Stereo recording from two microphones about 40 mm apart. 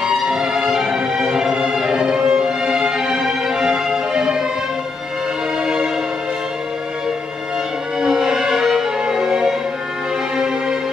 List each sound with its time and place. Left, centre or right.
0.0 s music: centre
5.6 s music: centre
8.0 s music: centre